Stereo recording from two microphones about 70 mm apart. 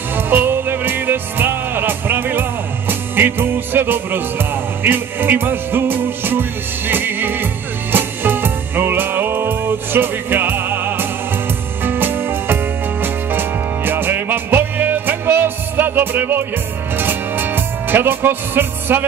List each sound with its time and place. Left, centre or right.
0.1 s music: right